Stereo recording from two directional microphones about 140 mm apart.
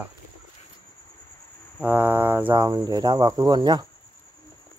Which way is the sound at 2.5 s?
25° right (ahead or behind).